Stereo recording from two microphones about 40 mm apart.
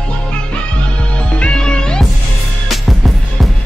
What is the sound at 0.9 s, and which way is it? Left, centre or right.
Music, left.